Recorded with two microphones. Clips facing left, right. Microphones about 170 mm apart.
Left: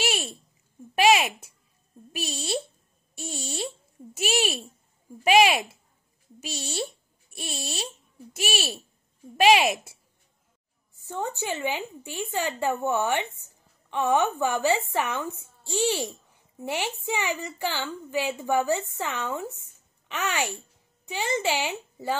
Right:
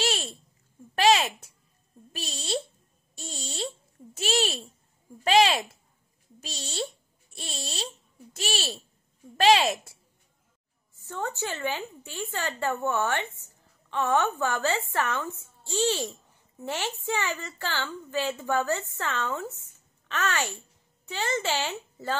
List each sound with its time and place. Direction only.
0.0 s a sound: 10° left (ahead or behind)
0.9 s a woman's voice: 15° left (ahead or behind)
11.0 s a woman's voice: 15° left (ahead or behind)